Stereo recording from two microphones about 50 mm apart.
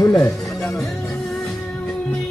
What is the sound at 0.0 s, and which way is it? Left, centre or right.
Music, left.